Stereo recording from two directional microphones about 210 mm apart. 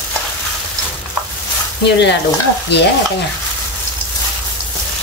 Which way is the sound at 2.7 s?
55° left (ahead or behind).